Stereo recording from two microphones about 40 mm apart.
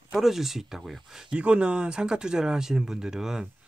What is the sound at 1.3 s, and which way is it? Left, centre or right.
Speech, right.